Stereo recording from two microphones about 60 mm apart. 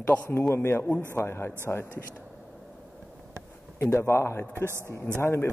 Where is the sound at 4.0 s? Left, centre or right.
Left.